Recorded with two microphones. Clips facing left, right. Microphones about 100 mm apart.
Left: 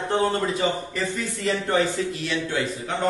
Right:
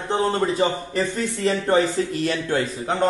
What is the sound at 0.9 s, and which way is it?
A man's voice, 35° right (ahead or behind).